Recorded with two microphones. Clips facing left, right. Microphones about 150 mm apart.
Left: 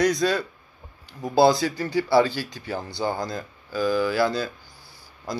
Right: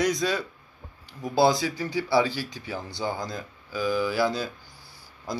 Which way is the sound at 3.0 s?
60° left (ahead or behind).